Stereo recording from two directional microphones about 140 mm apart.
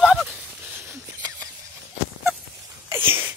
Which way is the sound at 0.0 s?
Centre (ahead or behind).